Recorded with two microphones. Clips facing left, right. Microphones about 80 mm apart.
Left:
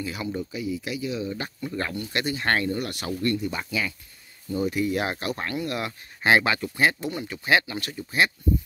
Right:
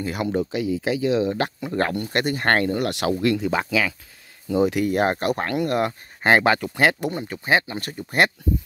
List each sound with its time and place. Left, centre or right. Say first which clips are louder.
0.0 s speech: right 6 dB; right
0.4 s speech: right 6 dB; right
1.7 s speech: right 4 dB; right
4.8 s speech: right 6 dB; right
7.1 s speech: right 2 dB; right